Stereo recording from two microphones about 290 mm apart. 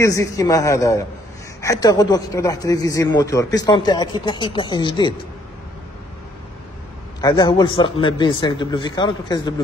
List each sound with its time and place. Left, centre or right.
0.0 s a man's voice: centre
7.2 s a man's voice: centre